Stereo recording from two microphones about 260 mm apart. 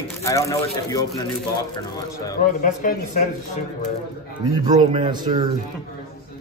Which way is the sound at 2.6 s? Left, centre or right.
Left.